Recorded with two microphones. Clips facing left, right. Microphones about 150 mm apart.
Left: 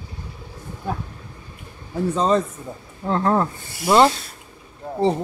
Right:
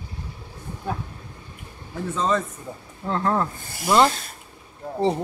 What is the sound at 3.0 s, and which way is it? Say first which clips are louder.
Speech: left 3 dB; 20° left (ahead or behind).